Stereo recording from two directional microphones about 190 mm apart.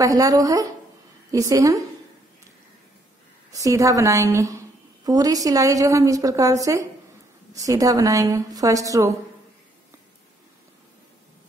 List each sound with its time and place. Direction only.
0.0 s a woman's voice: 20° right (ahead or behind)
3.5 s a woman's voice: 15° right (ahead or behind)